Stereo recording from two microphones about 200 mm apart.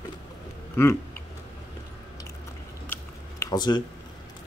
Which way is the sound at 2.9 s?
15° left (ahead or behind).